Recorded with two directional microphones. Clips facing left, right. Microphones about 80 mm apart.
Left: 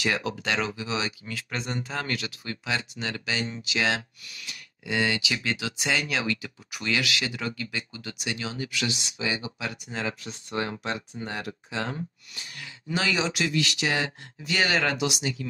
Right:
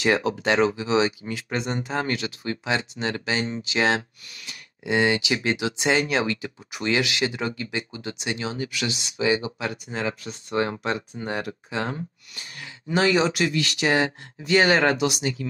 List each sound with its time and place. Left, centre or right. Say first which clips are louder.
0.0 s speech: right 6 dB; right
8.5 s speech: right 2 dB; centre
9.2 s speech: right 8 dB; right